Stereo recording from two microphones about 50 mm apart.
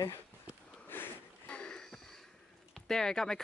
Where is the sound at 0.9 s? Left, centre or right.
Left.